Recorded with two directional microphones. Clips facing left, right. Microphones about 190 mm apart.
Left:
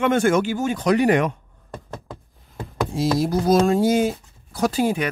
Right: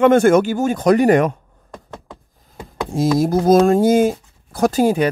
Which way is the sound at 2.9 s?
45° right (ahead or behind).